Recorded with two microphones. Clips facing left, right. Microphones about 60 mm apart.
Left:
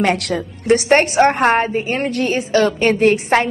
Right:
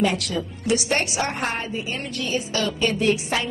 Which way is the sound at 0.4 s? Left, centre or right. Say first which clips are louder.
Left 8 dB; left.